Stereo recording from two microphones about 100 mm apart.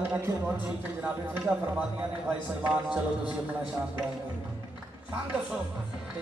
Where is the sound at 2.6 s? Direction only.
15° right (ahead or behind).